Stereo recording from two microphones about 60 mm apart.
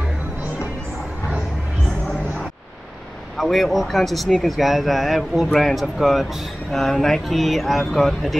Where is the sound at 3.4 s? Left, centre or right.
Centre.